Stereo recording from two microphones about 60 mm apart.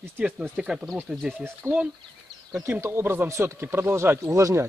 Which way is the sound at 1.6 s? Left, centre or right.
Right.